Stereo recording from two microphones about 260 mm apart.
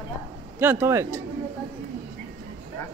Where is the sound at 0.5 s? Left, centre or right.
Centre.